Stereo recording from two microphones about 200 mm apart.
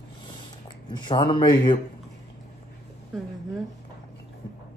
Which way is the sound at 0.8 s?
25° left (ahead or behind).